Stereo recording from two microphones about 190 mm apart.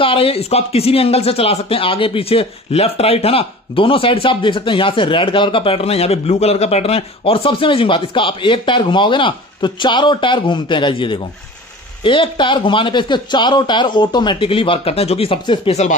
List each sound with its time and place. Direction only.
0.0 s speech: 30° left (ahead or behind)